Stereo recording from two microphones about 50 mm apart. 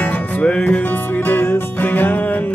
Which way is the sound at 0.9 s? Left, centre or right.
Left.